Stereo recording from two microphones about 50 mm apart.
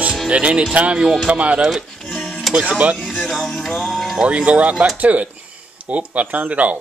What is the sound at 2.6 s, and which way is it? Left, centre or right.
Speech, right.